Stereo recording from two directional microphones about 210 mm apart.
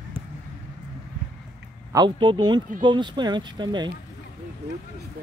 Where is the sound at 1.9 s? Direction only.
20° right (ahead or behind).